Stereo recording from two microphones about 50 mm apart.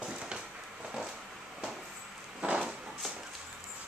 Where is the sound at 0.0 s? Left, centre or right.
Centre.